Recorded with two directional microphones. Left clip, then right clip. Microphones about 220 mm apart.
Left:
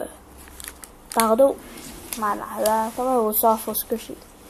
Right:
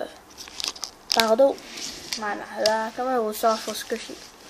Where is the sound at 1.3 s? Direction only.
Centre (ahead or behind).